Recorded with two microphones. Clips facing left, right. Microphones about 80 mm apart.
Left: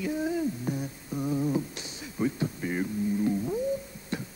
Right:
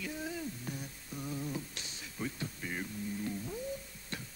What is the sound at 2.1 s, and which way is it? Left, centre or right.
Music, centre.